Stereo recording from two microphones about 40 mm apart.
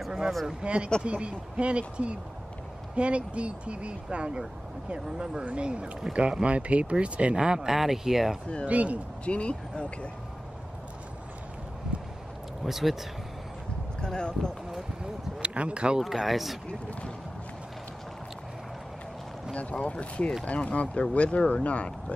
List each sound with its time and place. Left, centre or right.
0.5 s speech: right
7.3 s speech: centre
7.7 s speech: centre
8.6 s speech: right
9.2 s speech: left
11.9 s vehicle: right
12.6 s speech: centre
14.0 s speech: left
15.4 s speech: right
16.0 s speech: centre
19.5 s speech: left